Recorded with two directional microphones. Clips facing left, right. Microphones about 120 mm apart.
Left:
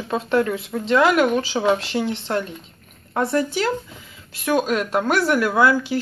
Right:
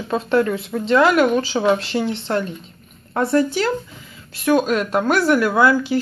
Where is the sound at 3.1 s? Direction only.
15° left (ahead or behind).